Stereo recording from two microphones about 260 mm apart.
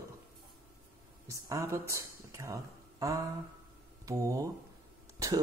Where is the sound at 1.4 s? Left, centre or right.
Centre.